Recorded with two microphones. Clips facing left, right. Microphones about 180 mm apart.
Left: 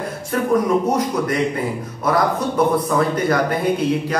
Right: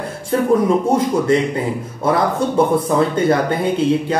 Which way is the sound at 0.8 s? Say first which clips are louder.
Right 4 dB; 25° right (ahead or behind).